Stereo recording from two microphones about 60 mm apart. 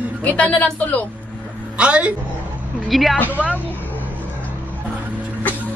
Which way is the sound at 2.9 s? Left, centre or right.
Centre.